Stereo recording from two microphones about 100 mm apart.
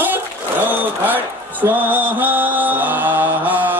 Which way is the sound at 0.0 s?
20° right (ahead or behind).